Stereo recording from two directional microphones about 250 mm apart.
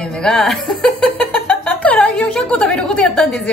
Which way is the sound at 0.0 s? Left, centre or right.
Centre.